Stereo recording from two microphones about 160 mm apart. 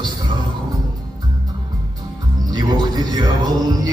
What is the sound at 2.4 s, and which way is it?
Music, 25° right (ahead or behind).